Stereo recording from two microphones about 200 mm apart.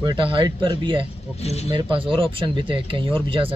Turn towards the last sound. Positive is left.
turn(degrees=-25)  # may be behind; listen again after turning